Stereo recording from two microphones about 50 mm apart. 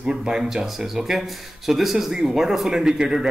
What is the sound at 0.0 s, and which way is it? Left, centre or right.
Speech, centre.